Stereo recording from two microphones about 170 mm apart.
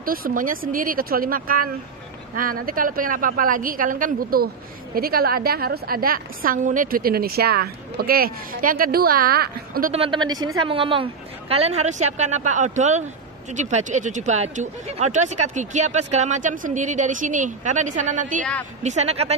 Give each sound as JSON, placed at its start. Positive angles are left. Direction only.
{"t": 0.0, "sound": "a woman's voice", "side_deg": -60}
{"t": 9.9, "sound": "a woman's voice", "side_deg": -30}
{"t": 18.4, "sound": "a woman's voice", "side_deg": 10}
{"t": 18.8, "sound": "a woman's voice", "side_deg": -40}